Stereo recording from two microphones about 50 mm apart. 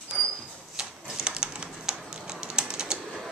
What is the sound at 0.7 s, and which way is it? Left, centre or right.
Typewriter, centre.